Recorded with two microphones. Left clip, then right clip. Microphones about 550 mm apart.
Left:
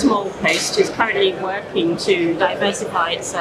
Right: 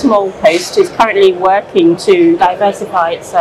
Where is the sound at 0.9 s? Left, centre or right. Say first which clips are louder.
Right 9 dB; right.